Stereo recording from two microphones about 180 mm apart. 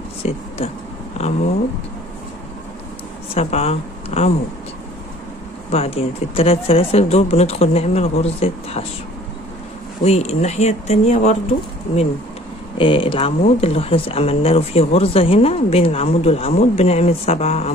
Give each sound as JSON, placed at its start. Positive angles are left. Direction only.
{"t": 0.2, "sound": "speech", "side_deg": 35}
{"t": 3.3, "sound": "speech", "side_deg": 35}
{"t": 5.7, "sound": "speech", "side_deg": 35}
{"t": 10.0, "sound": "speech", "side_deg": 35}
{"t": 12.7, "sound": "speech", "side_deg": 30}